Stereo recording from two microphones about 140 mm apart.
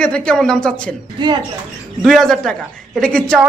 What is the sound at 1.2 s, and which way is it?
Speech, 35° right (ahead or behind).